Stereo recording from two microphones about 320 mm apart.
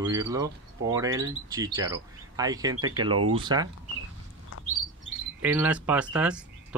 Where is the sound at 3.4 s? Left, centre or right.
Centre.